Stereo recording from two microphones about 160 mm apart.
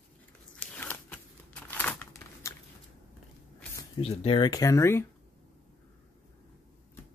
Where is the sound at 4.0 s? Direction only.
35° left (ahead or behind); by 5.0 s 15° left (ahead or behind).